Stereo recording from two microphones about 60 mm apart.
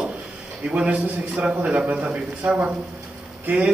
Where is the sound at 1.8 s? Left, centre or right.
Centre.